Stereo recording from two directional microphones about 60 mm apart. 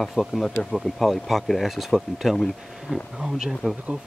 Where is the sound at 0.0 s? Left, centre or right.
Centre.